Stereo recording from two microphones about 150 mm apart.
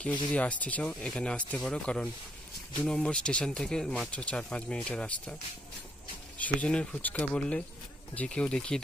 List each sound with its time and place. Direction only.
0.3 s speech: 10° left (ahead or behind)
6.3 s speech: 10° left (ahead or behind)